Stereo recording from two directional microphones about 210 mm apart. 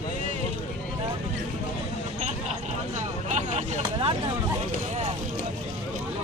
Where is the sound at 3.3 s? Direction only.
30° right (ahead or behind).